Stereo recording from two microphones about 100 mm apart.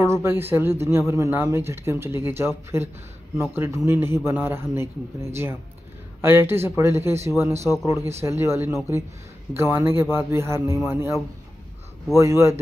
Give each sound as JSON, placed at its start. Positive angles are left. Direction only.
{"t": 0.0, "sound": "a man's voice", "side_deg": -25}
{"t": 12.2, "sound": "a man's voice", "side_deg": -30}